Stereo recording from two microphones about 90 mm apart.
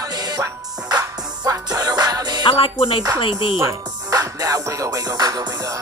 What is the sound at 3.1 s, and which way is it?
Speech, 70° left (ahead or behind).